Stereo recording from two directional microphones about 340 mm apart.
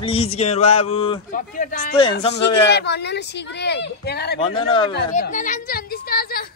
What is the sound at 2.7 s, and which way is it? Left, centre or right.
Speech, left.